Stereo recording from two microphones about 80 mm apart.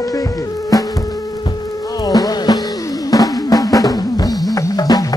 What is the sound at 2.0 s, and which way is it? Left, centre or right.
Music, left.